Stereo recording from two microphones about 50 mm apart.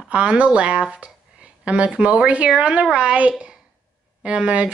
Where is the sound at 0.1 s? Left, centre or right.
Right.